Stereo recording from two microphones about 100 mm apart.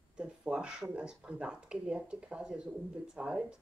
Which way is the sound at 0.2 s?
10° right (ahead or behind).